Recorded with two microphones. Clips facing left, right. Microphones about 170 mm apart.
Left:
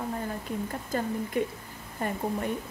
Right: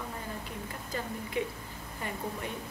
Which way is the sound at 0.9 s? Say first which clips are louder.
Left 6 dB; 45° left (ahead or behind).